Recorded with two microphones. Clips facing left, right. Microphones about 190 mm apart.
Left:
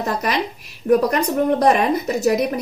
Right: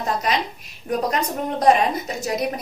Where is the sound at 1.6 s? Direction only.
65° left (ahead or behind).